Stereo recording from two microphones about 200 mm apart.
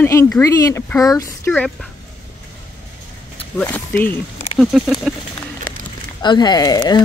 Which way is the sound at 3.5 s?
10° left (ahead or behind).